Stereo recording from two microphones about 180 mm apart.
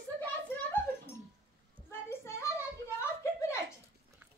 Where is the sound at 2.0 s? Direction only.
15° left (ahead or behind).